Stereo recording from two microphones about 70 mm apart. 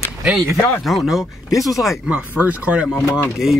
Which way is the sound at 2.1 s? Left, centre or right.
Right.